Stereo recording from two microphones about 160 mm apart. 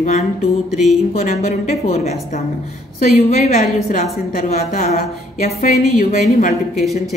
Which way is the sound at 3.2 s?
45° left (ahead or behind).